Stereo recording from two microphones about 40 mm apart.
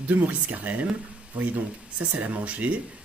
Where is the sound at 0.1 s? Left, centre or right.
Right.